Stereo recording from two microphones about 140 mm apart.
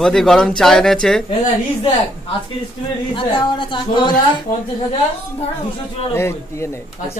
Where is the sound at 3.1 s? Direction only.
35° left (ahead or behind).